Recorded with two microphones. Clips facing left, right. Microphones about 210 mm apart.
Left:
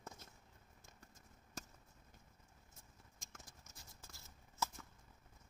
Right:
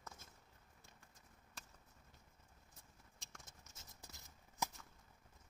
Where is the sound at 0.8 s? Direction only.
45° left (ahead or behind).